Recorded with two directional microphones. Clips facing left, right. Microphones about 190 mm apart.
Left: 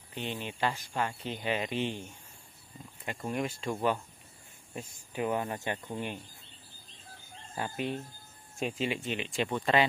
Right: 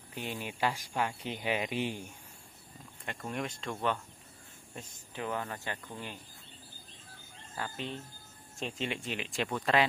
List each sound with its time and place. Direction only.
0.1 s speech: 10° right (ahead or behind)
3.2 s speech: 5° left (ahead or behind)
7.5 s speech: 15° left (ahead or behind)
8.5 s speech: 5° left (ahead or behind)